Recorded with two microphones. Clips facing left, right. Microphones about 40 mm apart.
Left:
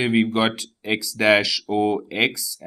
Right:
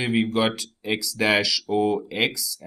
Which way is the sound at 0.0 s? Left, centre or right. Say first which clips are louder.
Left 3 dB; centre.